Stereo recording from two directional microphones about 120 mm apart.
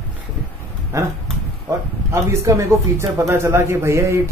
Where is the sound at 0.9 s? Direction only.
25° right (ahead or behind).